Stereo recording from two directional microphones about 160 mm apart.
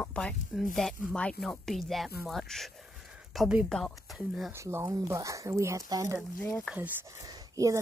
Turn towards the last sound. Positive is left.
turn(degrees=-20)  # may be behind; listen again after turning